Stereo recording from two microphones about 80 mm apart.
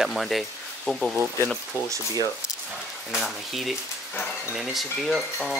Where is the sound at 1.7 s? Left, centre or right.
Left.